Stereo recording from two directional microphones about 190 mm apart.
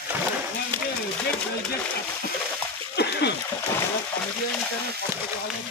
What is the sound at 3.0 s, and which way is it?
Splash, 60° left (ahead or behind).